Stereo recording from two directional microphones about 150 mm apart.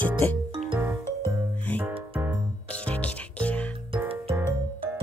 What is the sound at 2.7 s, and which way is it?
Music, 10° left (ahead or behind).